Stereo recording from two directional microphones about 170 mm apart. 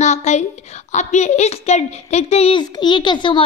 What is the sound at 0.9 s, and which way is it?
A woman's voice, 40° left (ahead or behind).